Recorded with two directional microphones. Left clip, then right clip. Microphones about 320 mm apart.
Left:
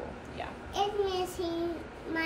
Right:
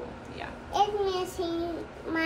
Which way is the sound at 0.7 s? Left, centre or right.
Centre.